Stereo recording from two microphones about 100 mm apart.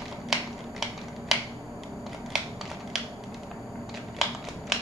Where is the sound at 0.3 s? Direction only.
5° right (ahead or behind).